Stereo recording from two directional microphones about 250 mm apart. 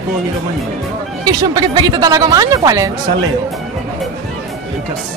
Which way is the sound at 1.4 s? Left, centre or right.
Centre.